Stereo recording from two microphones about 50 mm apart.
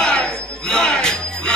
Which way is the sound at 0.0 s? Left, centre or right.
Centre.